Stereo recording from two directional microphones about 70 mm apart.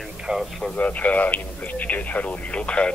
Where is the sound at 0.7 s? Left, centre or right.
Left.